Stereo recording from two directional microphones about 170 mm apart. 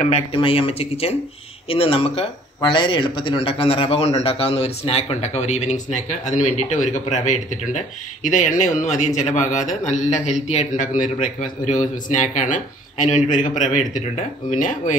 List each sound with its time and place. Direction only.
0.3 s speech: 30° left (ahead or behind); by 15.0 s 50° left (ahead or behind)